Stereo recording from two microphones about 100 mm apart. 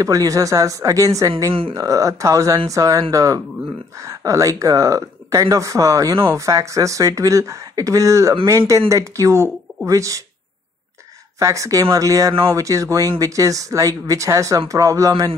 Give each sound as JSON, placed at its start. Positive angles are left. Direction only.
{"t": 0.0, "sound": "speech", "side_deg": -35}
{"t": 11.3, "sound": "speech", "side_deg": -35}